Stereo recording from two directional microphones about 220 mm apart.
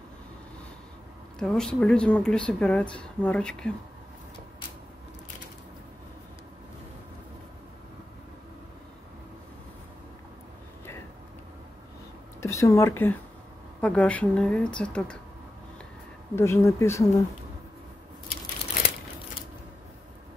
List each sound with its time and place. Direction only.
1.4 s speech: centre (ahead or behind)
12.4 s speech: 15° left (ahead or behind)
16.3 s speech: 10° left (ahead or behind)